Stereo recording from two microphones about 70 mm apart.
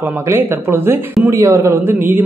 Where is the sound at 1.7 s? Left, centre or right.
Right.